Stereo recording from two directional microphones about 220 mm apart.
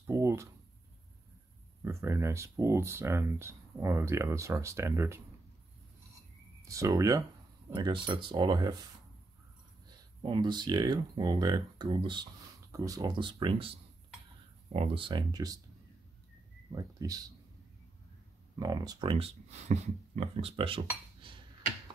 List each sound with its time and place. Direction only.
0.0 s a sound: 15° right (ahead or behind)
1.9 s speech: 10° right (ahead or behind)
6.7 s speech: 15° right (ahead or behind)
10.2 s speech: 20° right (ahead or behind)
16.7 s speech: 15° right (ahead or behind)
18.6 s speech: 15° right (ahead or behind)
21.2 s a sound: 25° right (ahead or behind)